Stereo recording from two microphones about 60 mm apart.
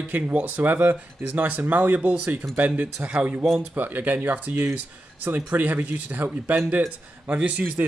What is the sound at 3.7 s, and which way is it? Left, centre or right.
Speech, right.